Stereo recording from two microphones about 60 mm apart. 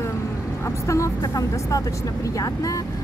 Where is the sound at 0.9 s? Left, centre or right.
Left.